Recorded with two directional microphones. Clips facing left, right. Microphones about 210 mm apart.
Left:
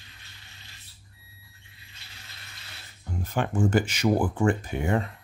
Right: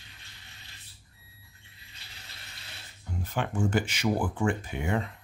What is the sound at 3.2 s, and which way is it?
Speech, 45° left (ahead or behind).